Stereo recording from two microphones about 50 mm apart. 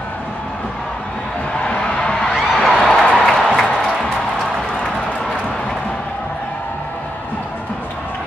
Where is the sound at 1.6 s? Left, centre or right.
Centre.